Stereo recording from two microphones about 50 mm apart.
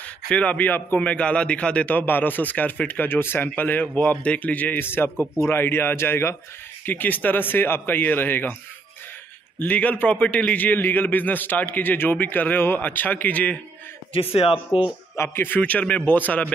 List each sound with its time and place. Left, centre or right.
0.3 s a man's voice: left
0.9 s a man's voice: left
2.0 s a man's voice: left
3.1 s speech: left
3.5 s a man's voice: left
4.7 s speech: left
6.9 s speech: left
9.6 s a man's voice: left
15.2 s speech: left
15.6 s a man's voice: left